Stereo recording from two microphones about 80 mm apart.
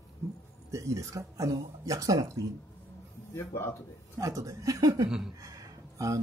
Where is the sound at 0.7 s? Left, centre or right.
Right.